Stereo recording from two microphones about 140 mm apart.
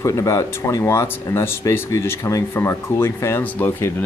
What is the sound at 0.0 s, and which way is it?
Speech, 25° left (ahead or behind).